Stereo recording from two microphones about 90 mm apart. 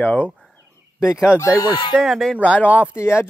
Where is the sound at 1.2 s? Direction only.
30° left (ahead or behind).